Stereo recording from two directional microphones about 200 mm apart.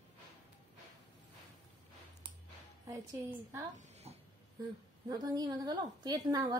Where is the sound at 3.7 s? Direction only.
35° right (ahead or behind).